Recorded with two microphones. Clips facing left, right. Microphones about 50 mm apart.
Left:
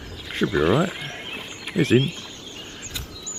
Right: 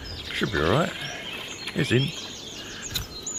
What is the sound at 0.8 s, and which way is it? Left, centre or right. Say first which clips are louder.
Speech: left 2 dB; centre.